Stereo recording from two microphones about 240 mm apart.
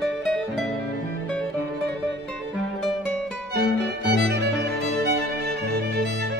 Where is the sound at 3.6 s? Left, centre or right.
Right.